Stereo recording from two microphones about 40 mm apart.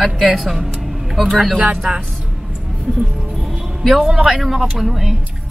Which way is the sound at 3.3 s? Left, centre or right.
Centre.